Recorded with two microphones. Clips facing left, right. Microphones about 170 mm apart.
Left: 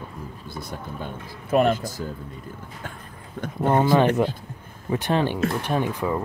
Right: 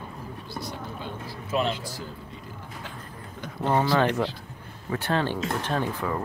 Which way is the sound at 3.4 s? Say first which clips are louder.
Left 4 dB; 50° left (ahead or behind).